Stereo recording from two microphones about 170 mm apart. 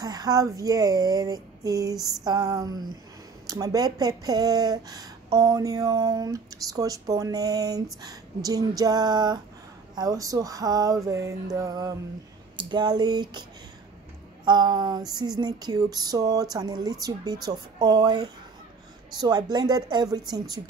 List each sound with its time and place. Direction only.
0.0 s speech: 25° right (ahead or behind)